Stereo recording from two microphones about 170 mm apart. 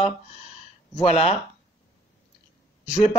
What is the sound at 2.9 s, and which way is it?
Speech, 40° left (ahead or behind).